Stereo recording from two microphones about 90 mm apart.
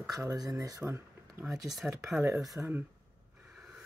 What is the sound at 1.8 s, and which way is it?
Speech, 10° right (ahead or behind).